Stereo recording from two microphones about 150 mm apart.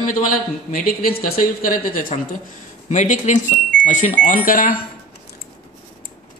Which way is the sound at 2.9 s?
55° left (ahead or behind).